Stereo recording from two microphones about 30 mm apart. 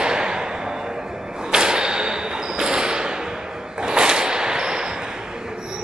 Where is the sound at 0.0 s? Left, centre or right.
Right.